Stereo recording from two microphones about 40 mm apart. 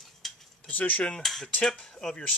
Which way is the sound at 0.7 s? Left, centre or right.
Left.